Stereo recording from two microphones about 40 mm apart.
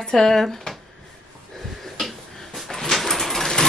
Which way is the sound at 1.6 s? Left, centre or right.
Centre.